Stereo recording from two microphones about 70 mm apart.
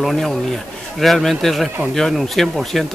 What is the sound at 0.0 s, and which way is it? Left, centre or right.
Speech, centre.